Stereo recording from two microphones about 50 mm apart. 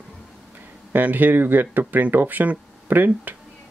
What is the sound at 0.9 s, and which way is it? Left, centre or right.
Speech, right.